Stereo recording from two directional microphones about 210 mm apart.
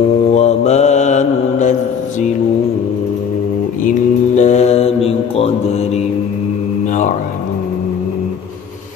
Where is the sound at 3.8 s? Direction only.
35° left (ahead or behind).